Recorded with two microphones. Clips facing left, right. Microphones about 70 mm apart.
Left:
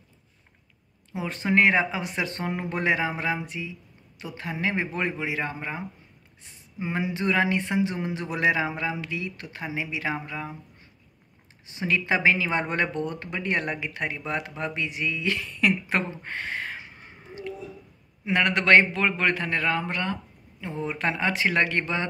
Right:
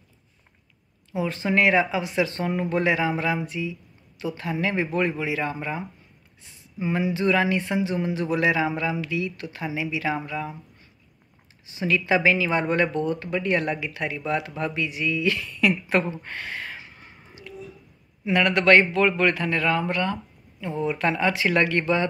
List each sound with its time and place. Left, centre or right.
1.1 s speech: left
11.8 s speech: left